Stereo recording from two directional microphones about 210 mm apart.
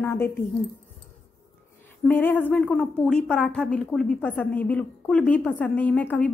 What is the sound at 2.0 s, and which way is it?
A woman's voice, 10° left (ahead or behind).